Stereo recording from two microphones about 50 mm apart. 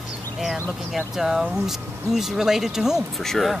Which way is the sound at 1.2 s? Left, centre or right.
Centre.